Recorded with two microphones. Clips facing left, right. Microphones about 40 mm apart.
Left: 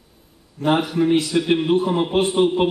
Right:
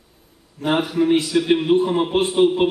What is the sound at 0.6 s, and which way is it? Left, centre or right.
A man's voice, centre.